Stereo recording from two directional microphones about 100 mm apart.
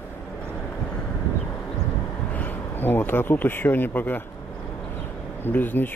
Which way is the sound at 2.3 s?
20° left (ahead or behind).